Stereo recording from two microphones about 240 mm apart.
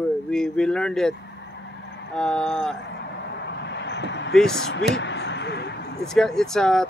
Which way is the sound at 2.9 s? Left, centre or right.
Left.